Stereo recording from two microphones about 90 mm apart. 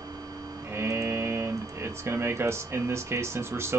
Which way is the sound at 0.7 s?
30° right (ahead or behind).